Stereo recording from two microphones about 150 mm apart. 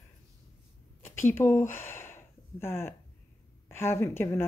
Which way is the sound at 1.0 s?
15° left (ahead or behind).